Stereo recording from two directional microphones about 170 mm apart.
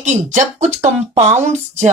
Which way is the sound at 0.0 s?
45° right (ahead or behind).